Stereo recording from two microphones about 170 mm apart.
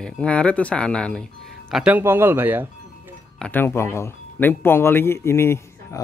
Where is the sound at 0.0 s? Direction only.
5° left (ahead or behind).